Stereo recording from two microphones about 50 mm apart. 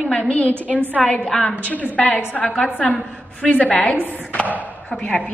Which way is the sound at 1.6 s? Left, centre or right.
Left.